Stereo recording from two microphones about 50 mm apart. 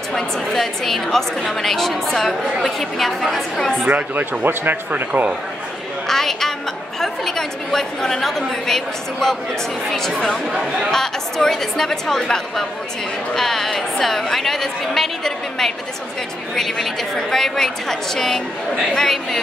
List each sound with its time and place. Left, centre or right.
0.1 s a woman's voice: centre
4.1 s speech: right
6.0 s a sound: centre
7.0 s a woman's voice: centre
10.5 s speech: centre
10.9 s a woman's voice: centre